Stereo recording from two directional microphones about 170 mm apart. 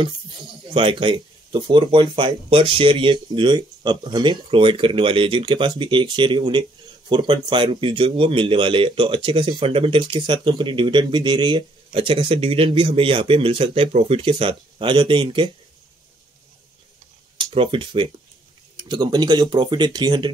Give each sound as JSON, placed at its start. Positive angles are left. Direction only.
{"t": 0.0, "sound": "speech", "side_deg": -30}
{"t": 17.4, "sound": "speech", "side_deg": -30}